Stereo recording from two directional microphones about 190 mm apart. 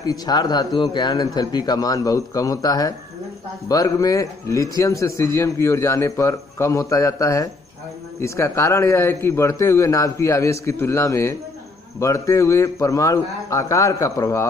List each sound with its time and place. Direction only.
0.0 s a man's voice: 20° left (ahead or behind)